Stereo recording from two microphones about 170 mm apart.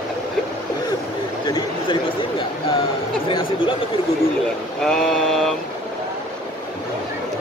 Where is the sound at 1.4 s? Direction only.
25° left (ahead or behind).